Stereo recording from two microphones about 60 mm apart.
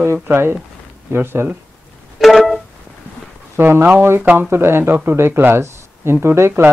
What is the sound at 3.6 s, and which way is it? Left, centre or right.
Speech, right.